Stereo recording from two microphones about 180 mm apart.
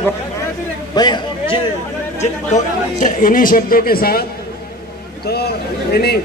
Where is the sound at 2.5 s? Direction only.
45° left (ahead or behind).